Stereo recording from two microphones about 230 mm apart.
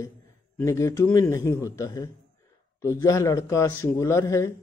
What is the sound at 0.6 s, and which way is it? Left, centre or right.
A man's voice, centre.